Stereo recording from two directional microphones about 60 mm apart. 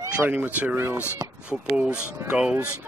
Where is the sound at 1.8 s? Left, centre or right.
Right.